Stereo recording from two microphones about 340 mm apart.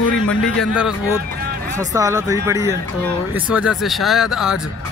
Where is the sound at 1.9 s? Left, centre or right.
Centre.